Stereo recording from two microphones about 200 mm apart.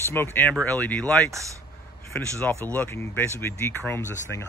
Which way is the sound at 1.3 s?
15° right (ahead or behind).